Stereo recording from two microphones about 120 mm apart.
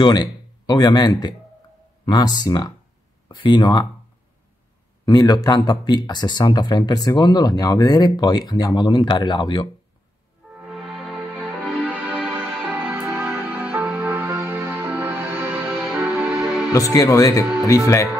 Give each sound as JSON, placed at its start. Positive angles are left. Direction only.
{"t": 0.0, "sound": "speech", "side_deg": 35}
{"t": 5.0, "sound": "speech", "side_deg": 35}
{"t": 10.6, "sound": "music", "side_deg": -5}
{"t": 15.7, "sound": "music", "side_deg": 0}
{"t": 16.7, "sound": "speech", "side_deg": 30}